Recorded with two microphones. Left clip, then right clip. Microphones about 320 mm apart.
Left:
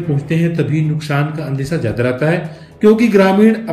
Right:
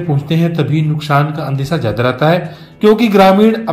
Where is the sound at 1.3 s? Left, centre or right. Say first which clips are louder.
Right 2 dB; right.